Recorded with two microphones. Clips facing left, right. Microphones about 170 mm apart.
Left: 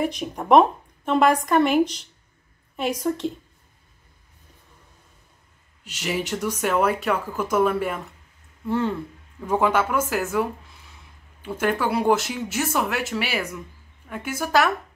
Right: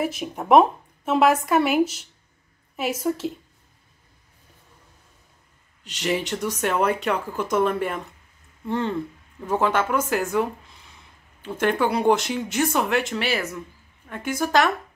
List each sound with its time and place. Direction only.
0.0 s speech: 5° right (ahead or behind)
5.9 s speech: 10° left (ahead or behind)
11.4 s speech: 5° left (ahead or behind)